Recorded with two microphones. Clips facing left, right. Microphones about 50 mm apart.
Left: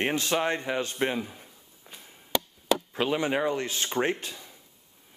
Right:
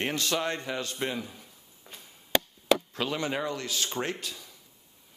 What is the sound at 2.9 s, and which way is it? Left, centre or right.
A man's voice, left.